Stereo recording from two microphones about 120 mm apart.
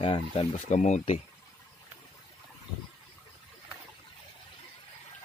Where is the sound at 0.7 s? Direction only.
85° left; by 1.2 s 70° left (ahead or behind).